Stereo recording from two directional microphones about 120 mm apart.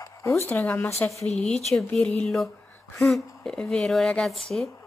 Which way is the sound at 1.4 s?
5° left (ahead or behind).